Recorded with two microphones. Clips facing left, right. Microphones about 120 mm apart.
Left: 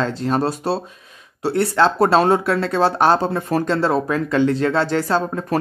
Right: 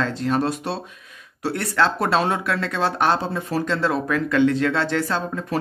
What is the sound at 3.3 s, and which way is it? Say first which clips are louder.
Speech: left 4 dB; 50° left (ahead or behind).